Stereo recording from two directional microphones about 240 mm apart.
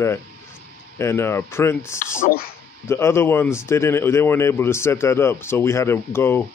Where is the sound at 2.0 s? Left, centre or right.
Left.